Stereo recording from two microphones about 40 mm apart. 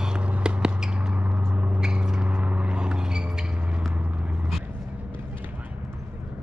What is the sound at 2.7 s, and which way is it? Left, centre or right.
Vehicle, right.